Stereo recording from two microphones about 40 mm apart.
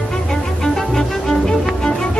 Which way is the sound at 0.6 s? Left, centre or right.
Centre.